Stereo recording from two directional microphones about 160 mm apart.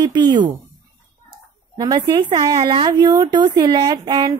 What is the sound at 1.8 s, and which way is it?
A woman's voice, 25° right (ahead or behind).